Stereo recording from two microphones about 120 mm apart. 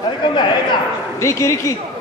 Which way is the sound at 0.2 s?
40° left (ahead or behind).